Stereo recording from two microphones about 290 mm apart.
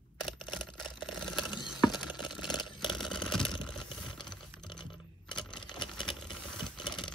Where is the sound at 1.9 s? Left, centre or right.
Centre.